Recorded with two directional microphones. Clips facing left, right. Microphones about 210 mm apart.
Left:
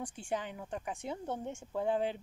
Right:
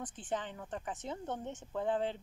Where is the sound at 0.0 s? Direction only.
10° left (ahead or behind).